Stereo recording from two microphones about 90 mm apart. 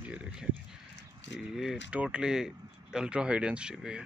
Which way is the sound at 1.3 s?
5° right (ahead or behind).